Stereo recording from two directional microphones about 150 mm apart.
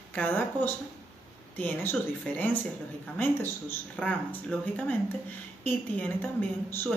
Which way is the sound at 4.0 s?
5° left (ahead or behind).